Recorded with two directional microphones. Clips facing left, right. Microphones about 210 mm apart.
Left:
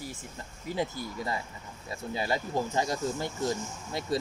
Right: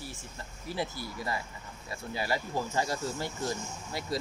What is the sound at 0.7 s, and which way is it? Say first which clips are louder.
Speech: left 3 dB; 15° left (ahead or behind).